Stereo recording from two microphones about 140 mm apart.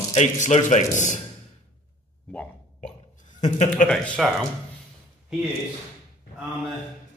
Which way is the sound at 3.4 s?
60° left (ahead or behind).